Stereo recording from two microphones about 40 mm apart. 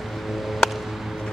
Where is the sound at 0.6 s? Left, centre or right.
Centre.